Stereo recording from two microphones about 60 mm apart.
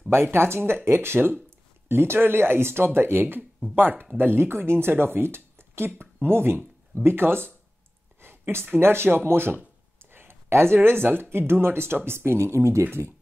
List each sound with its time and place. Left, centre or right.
0.1 s speech: right